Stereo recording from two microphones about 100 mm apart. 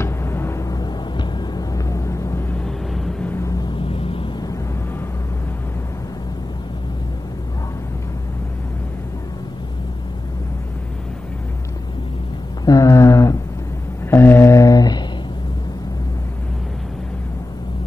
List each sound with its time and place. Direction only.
0.0 s music: 25° left (ahead or behind)
1.1 s vehicle: 35° left (ahead or behind)
2.5 s vehicle: 10° left (ahead or behind)
3.6 s vehicle: 60° left (ahead or behind)
12.6 s a sound: 35° left (ahead or behind)